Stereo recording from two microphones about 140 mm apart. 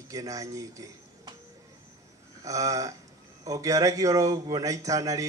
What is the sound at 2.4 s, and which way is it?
A man's voice, 25° right (ahead or behind).